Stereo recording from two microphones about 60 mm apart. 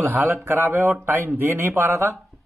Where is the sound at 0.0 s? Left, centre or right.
Right.